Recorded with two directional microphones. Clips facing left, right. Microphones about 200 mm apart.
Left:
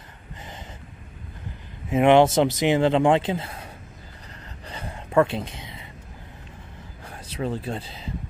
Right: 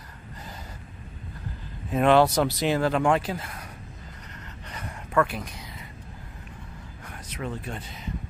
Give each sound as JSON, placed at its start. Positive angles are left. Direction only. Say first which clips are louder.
{"t": 1.9, "sound": "speech", "louder": "left 3 dB", "side_deg": 20}
{"t": 4.6, "sound": "a sound", "louder": "left 3 dB", "side_deg": 30}
{"t": 7.1, "sound": "speech", "louder": "left 5 dB", "side_deg": 30}